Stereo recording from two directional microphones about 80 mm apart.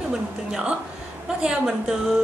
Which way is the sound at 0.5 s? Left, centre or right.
Centre.